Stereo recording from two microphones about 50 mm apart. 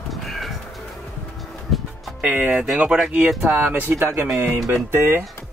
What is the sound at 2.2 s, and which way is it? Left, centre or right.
Speech, right.